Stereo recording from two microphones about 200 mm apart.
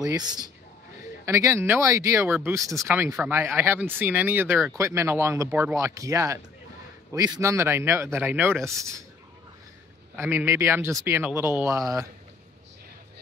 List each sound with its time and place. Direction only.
0.0 s speech: 20° right (ahead or behind)
10.1 s speech: 10° right (ahead or behind)